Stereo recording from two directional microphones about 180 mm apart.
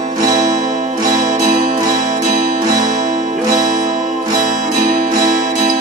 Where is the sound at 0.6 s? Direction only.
45° right (ahead or behind).